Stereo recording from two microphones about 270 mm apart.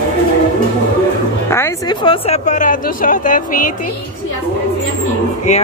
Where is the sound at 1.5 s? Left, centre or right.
Centre; by 3.7 s left.